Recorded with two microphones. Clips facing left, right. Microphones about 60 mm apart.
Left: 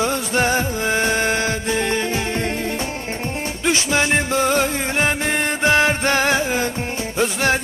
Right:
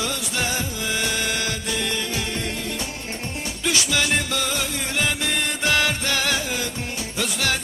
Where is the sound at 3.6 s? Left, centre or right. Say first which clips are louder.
Left 4 dB; left.